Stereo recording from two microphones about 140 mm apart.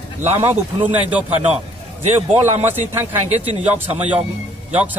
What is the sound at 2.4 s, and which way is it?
A man's voice, 55° right (ahead or behind).